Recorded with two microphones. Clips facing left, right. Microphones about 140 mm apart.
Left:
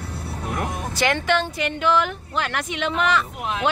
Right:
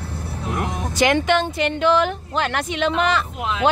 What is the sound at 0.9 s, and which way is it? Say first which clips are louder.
Speech: right 4 dB; 15° right (ahead or behind).